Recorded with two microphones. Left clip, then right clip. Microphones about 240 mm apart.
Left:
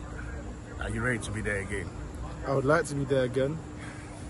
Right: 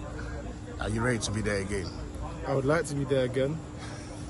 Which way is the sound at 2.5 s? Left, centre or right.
Centre.